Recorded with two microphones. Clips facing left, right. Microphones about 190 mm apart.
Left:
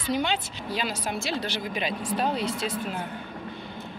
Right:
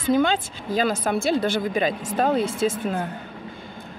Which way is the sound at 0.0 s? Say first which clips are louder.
Right 7 dB; 50° right (ahead or behind).